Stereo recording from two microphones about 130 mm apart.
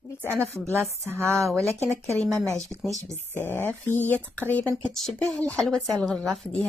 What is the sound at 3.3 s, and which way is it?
Speech, 15° left (ahead or behind).